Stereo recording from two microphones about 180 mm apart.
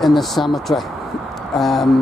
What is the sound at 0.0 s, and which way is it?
Speech, centre (ahead or behind).